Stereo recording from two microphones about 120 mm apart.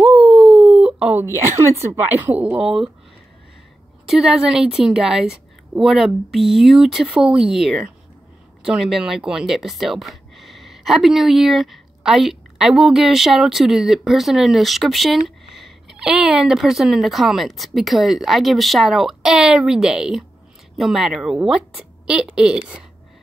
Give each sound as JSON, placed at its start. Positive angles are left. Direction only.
{"t": 0.0, "sound": "a sound", "side_deg": -10}
{"t": 1.2, "sound": "a woman's voice", "side_deg": -20}
{"t": 4.1, "sound": "speech", "side_deg": -5}